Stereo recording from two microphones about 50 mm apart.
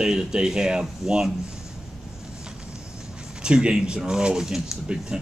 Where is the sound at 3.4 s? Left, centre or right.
Centre.